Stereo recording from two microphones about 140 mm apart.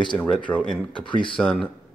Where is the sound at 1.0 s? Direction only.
35° left (ahead or behind).